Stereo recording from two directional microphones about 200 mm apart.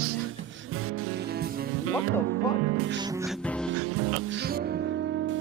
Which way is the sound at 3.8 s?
80° right.